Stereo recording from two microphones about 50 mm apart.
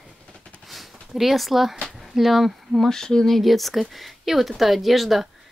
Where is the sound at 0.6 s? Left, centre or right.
Centre.